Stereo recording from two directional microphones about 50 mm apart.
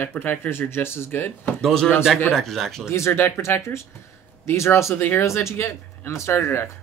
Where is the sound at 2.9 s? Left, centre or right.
Left.